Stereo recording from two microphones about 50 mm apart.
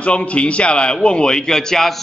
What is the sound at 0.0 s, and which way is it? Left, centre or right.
A man's voice, left.